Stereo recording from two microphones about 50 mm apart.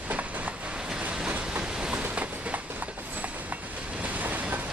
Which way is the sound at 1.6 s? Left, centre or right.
Centre.